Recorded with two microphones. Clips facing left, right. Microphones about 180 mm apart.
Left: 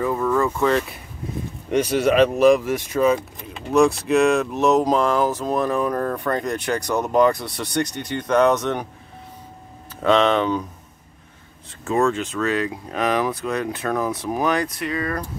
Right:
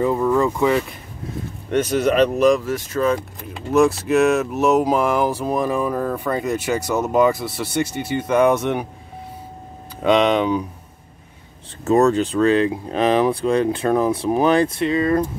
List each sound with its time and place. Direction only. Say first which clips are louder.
0.0 s speech: right 3 dB; 20° right (ahead or behind)
1.7 s speech: even; 10° left (ahead or behind)
3.7 s speech: right 1 dB; centre (ahead or behind)
10.0 s speech: right 1 dB; 15° right (ahead or behind)
11.8 s speech: right 5 dB; 40° right (ahead or behind)